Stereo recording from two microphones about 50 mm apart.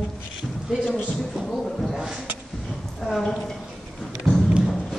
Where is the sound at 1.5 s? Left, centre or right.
Centre.